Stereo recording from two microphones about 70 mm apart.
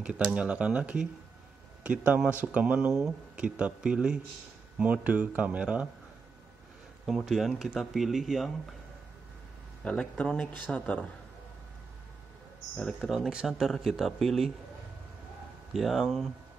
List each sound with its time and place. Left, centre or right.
0.3 s speech: centre
7.1 s speech: centre
9.8 s speech: centre
13.3 s speech: centre
15.7 s speech: centre